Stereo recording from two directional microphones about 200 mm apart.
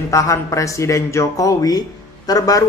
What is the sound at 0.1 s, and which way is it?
A man's voice, 15° left (ahead or behind).